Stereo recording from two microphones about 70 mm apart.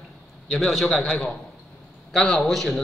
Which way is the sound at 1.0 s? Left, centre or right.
Centre.